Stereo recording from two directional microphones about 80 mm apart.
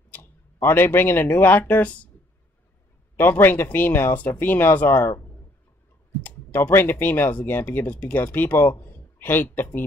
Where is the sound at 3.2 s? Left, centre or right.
Left.